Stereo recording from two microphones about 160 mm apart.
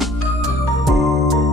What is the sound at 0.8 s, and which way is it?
Music, centre (ahead or behind).